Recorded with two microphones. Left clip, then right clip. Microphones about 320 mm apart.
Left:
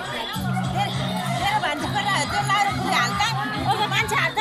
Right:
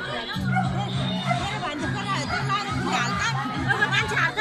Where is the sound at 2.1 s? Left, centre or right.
Centre.